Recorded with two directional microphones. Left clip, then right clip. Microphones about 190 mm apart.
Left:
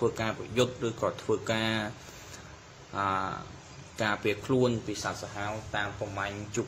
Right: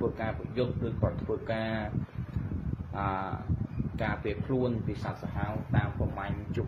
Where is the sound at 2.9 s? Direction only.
15° left (ahead or behind).